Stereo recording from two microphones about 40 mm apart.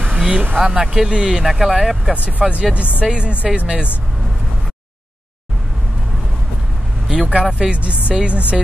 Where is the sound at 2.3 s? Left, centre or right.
Right.